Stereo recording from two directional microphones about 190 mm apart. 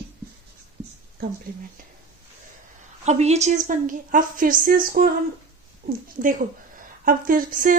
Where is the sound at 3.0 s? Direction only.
35° right (ahead or behind).